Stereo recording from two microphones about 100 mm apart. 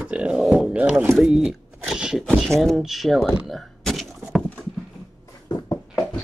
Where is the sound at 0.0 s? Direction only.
10° right (ahead or behind).